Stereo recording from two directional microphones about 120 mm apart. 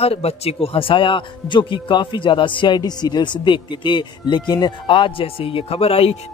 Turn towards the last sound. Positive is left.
turn(degrees=55)  # may be behind; listen again after turning